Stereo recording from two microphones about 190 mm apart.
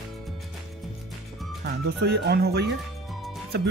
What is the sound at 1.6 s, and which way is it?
Speech, 60° right (ahead or behind).